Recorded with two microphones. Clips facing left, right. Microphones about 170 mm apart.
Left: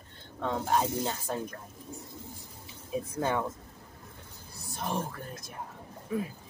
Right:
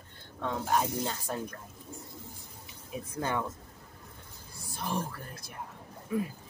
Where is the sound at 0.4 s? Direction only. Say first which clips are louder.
Left 1 dB; 25° left (ahead or behind).